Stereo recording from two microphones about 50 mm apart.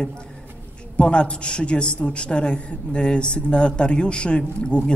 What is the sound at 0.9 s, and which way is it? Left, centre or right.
A man's voice, left.